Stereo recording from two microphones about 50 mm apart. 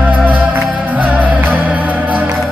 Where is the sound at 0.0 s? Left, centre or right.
Right.